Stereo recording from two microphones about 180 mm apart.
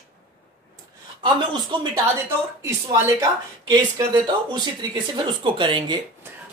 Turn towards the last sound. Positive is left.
turn(degrees=-25)  # may be behind; listen again after turning